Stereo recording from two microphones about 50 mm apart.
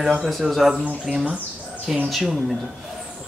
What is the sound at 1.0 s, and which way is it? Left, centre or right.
Speech, centre.